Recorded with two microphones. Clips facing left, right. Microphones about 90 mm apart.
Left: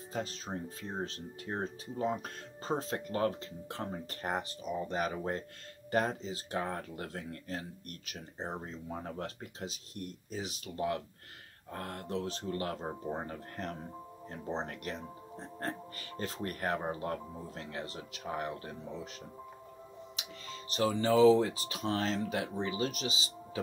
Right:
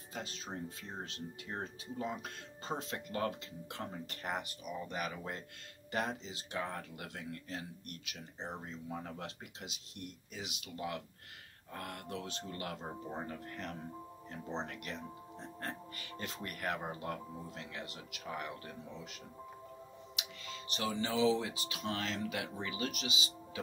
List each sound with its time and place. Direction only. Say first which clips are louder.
0.1 s speech: left 5 dB; 40° left (ahead or behind)
20.2 s speech: even; 35° left (ahead or behind)